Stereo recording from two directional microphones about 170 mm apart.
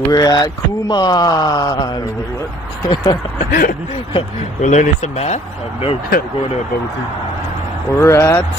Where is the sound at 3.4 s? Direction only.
55° left (ahead or behind).